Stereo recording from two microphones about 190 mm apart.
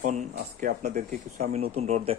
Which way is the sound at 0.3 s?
50° right (ahead or behind).